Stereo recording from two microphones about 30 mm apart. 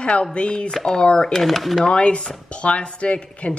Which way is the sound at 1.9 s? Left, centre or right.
Left.